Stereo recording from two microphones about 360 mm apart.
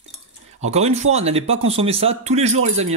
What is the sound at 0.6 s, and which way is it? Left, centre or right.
Speech, centre.